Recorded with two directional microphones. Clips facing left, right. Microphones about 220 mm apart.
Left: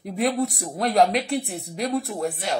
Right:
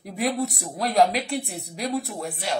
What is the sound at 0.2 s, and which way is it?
Speech, centre (ahead or behind).